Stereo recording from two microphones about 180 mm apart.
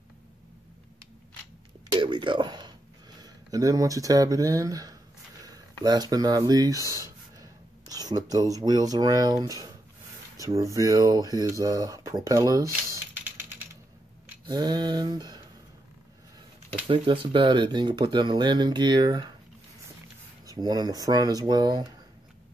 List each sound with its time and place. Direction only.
1.9 s a sound: 25° right (ahead or behind)
3.2 s speech: 20° right (ahead or behind)
6.9 s a sound: 15° right (ahead or behind)
7.9 s speech: 20° right (ahead or behind)
14.5 s speech: 25° right (ahead or behind)
16.8 s speech: 30° right (ahead or behind)
20.4 s speech: 20° right (ahead or behind)